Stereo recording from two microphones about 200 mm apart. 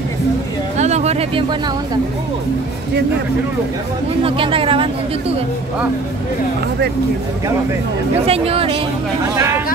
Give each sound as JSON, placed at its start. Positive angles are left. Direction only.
{"t": 0.7, "sound": "a sound", "side_deg": -35}
{"t": 4.2, "sound": "speech", "side_deg": -25}
{"t": 8.3, "sound": "speech", "side_deg": -30}